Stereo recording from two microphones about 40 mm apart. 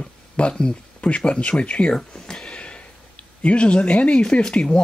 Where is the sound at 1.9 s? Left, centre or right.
Centre.